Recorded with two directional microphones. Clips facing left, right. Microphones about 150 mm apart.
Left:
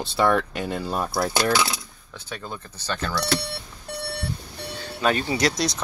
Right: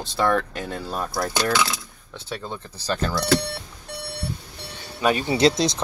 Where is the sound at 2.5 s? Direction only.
30° right (ahead or behind).